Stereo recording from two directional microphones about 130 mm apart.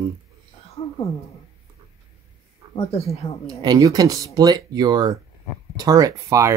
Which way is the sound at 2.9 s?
50° left (ahead or behind).